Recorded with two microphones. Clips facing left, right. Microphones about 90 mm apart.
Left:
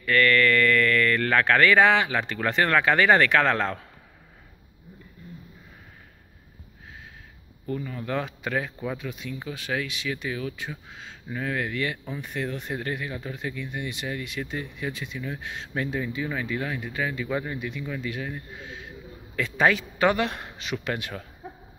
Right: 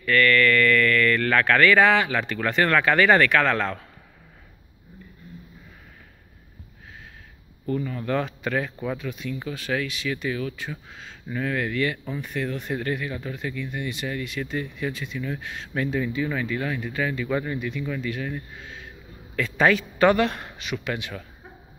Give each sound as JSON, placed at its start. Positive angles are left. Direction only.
{"t": 0.0, "sound": "speech", "side_deg": 20}
{"t": 7.6, "sound": "speech", "side_deg": 10}
{"t": 20.5, "sound": "a man's voice", "side_deg": 30}